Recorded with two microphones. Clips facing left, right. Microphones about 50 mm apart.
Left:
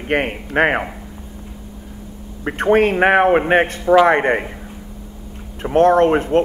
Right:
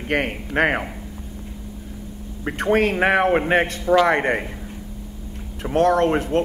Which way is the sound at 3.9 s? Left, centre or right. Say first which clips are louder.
Left 5 dB; centre.